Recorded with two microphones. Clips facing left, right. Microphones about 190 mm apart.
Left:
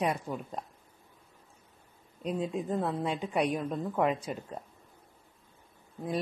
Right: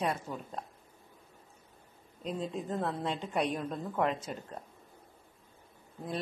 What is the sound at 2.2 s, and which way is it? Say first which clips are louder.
A woman's voice: left 4 dB; 5° left (ahead or behind).